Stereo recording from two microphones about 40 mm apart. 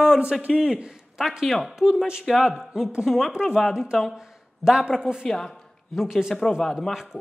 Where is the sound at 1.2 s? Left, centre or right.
Centre.